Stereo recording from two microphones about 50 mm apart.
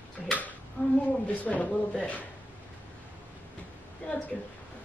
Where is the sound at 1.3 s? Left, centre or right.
Left.